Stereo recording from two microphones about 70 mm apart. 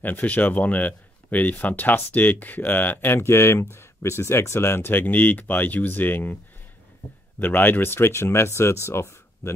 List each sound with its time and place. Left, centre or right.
0.0 s speech: left
7.3 s speech: left